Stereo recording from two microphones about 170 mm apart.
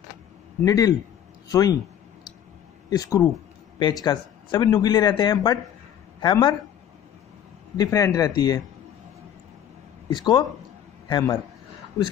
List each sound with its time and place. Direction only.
0.7 s speech: 20° left (ahead or behind)
2.9 s speech: 20° left (ahead or behind)
7.7 s speech: 20° left (ahead or behind)
10.0 s a man's voice: 25° left (ahead or behind)